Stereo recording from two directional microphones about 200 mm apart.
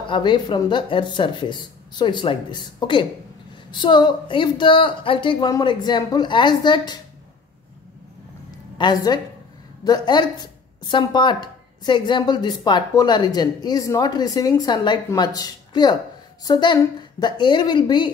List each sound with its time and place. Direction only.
0.0 s a woman's voice: 25° left (ahead or behind)
8.7 s a woman's voice: 20° left (ahead or behind)